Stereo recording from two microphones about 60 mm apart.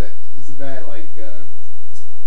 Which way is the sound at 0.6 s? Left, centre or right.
Centre.